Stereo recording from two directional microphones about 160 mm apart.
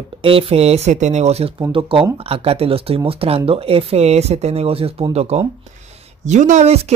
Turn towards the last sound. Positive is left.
turn(degrees=-40)  # may be behind; listen again after turning